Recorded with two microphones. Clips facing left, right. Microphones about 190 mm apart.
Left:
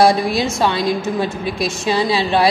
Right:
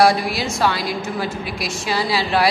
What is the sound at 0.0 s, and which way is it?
A man's voice, 25° left (ahead or behind).